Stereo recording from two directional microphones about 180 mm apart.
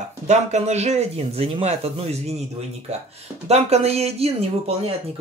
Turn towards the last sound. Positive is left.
turn(degrees=-35)  # may be behind; listen again after turning